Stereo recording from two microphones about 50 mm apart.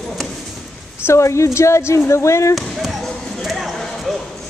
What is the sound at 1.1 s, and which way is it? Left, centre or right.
A woman's voice, left.